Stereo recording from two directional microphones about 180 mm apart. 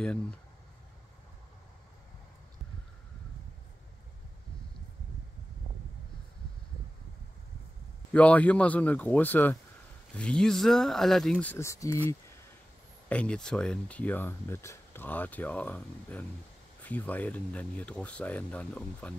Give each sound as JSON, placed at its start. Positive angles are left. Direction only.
{"t": 0.0, "sound": "speech", "side_deg": 5}
{"t": 8.1, "sound": "speech", "side_deg": 10}
{"t": 13.1, "sound": "speech", "side_deg": 5}